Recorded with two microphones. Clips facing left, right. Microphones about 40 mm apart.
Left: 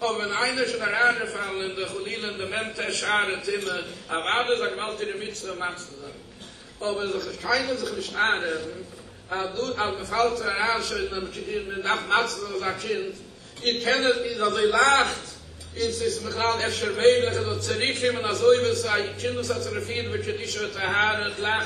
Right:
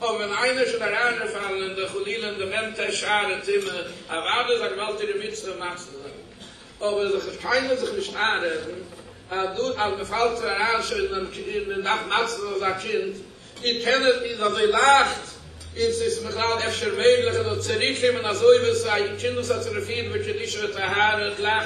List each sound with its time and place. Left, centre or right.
0.0 s a man's voice: right
6.8 s a man's voice: right